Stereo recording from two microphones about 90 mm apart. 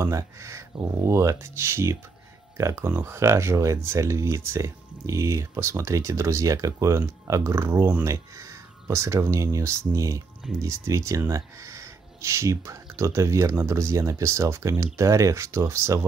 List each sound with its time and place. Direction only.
0.0 s speech: 35° right (ahead or behind)
8.1 s speech: 35° right (ahead or behind)